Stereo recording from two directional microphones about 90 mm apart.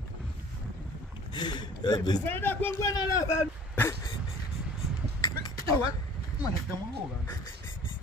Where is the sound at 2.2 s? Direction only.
25° left (ahead or behind).